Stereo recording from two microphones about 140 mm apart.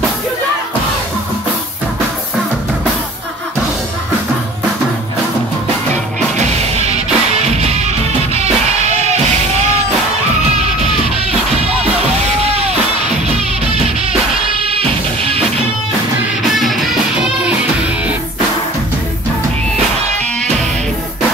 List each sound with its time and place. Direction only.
6.3 s music: 50° right (ahead or behind)
8.8 s music: 55° right (ahead or behind)
14.7 s music: 45° right (ahead or behind)
16.5 s music: centre (ahead or behind)